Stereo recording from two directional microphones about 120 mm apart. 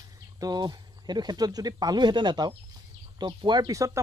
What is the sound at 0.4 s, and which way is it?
Speech, 35° right (ahead or behind).